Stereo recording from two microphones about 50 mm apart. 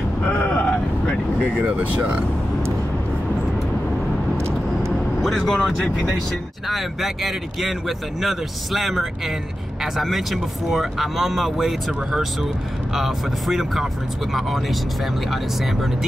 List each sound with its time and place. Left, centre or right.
0.2 s vehicle: left
0.7 s vehicle: centre
1.7 s speech: right
5.2 s speech: centre
6.7 s speech: centre